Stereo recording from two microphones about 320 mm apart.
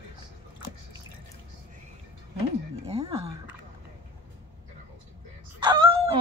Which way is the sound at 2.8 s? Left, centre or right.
Centre.